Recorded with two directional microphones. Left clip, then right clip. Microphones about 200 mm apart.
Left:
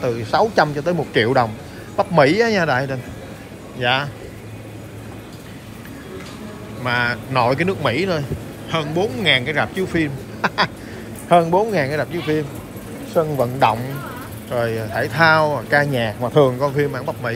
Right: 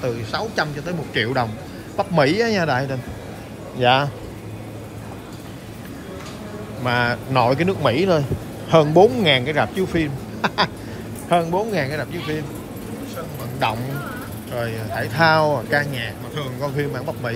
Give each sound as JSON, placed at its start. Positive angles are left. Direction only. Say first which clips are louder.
{"t": 0.0, "sound": "speech", "louder": "left 7 dB", "side_deg": -5}
{"t": 6.8, "sound": "speech", "louder": "left 1 dB", "side_deg": -15}
{"t": 14.5, "sound": "speech", "louder": "left 5 dB", "side_deg": -5}